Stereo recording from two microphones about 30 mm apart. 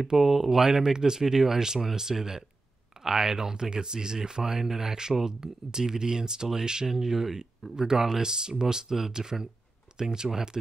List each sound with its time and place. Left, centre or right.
0.2 s speech: centre
1.2 s speech: centre